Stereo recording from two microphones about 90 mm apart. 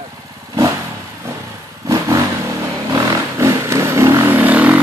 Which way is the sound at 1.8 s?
35° right (ahead or behind).